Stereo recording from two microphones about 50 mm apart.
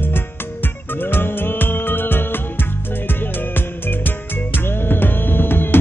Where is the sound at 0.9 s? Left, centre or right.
Left.